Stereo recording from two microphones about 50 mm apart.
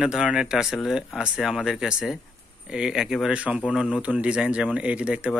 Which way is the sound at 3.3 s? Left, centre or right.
Right.